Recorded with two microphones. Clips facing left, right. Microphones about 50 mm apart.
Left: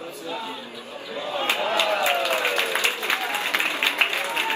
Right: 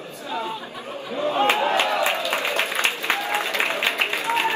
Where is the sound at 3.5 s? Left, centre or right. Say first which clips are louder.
Left 2 dB; right.